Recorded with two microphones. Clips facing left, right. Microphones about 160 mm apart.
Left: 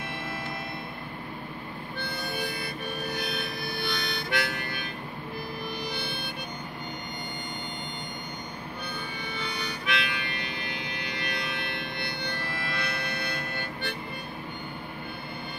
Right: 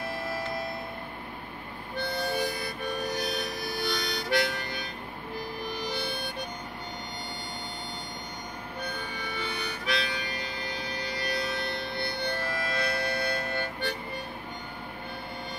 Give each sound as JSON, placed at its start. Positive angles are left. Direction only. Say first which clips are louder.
{"t": 2.2, "sound": "harmonica", "louder": "right 2 dB", "side_deg": -40}
{"t": 5.7, "sound": "harmonica", "louder": "right 1 dB", "side_deg": -40}
{"t": 9.8, "sound": "music", "louder": "right 1 dB", "side_deg": -35}